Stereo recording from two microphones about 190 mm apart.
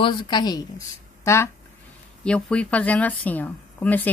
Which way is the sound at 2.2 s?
5° left (ahead or behind).